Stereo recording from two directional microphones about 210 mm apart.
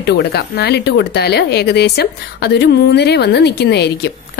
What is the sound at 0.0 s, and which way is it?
A woman's voice, 50° left (ahead or behind).